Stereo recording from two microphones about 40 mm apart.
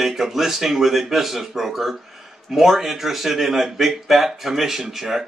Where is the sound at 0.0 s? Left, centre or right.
Centre.